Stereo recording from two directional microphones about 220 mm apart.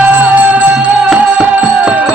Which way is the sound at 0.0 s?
10° right (ahead or behind).